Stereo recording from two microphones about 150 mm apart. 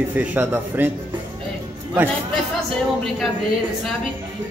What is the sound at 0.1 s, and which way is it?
Speech, 10° right (ahead or behind).